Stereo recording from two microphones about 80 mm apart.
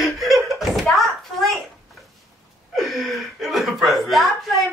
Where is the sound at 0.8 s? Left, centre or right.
Centre.